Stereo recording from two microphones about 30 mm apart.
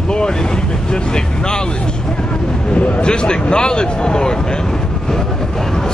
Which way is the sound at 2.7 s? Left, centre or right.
Left.